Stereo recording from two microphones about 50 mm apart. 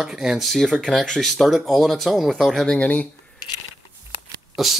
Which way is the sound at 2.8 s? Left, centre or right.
Left.